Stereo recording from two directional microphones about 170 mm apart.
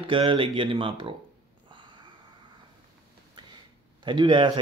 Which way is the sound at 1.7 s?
30° right (ahead or behind).